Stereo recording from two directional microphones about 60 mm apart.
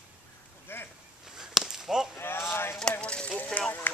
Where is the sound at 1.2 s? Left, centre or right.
Centre.